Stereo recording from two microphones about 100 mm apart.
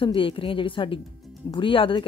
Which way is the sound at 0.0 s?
60° left (ahead or behind).